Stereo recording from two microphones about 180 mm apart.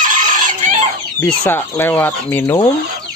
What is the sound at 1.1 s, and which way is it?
Speech, 10° left (ahead or behind).